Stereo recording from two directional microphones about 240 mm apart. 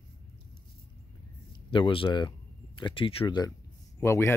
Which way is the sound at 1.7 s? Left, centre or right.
Left.